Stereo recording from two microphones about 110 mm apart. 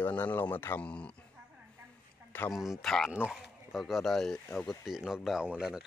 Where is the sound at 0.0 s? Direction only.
15° left (ahead or behind).